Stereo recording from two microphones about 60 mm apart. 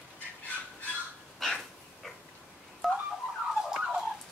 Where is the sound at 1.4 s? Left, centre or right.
Centre.